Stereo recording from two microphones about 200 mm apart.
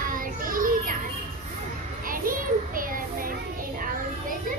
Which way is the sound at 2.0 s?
45° right (ahead or behind).